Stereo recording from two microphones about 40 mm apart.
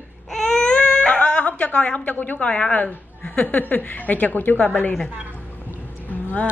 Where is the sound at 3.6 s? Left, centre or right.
Left.